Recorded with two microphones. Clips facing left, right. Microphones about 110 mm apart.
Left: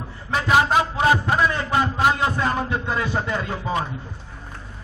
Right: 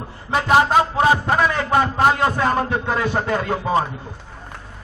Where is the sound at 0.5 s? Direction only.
40° right (ahead or behind).